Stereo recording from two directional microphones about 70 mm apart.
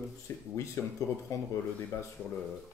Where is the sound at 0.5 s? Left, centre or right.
Left.